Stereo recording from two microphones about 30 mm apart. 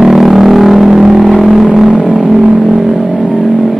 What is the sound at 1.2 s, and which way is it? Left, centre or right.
Vehicle, centre.